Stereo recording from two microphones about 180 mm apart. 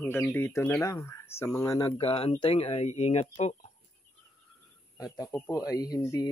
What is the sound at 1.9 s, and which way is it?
Speech, 30° left (ahead or behind).